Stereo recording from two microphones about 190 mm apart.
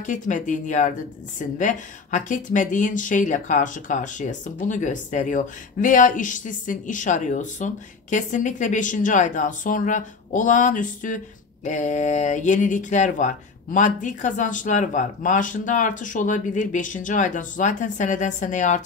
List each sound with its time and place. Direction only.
0.0 s speech: 40° left (ahead or behind)